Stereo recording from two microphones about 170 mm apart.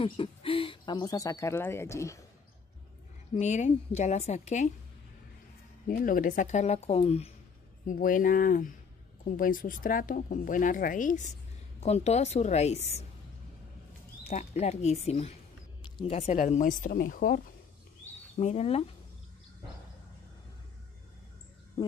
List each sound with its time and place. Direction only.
0.0 s speech: 30° left (ahead or behind); by 2.1 s 15° left (ahead or behind)
3.3 s speech: 45° left (ahead or behind)
5.9 s speech: 55° left (ahead or behind); by 7.3 s 40° left (ahead or behind)
7.8 s a woman's voice: 55° left (ahead or behind)
14.2 s a woman's voice: 40° left (ahead or behind); by 17.4 s 60° left (ahead or behind)
18.4 s a woman's voice: 40° left (ahead or behind)